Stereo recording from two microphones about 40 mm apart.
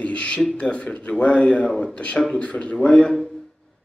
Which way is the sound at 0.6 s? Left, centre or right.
Left.